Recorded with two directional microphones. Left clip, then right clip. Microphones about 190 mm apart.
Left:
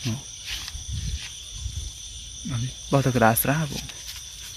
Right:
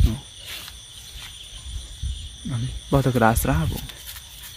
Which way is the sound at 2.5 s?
5° right (ahead or behind).